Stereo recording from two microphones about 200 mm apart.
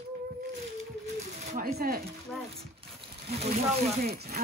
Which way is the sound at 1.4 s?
45° right (ahead or behind).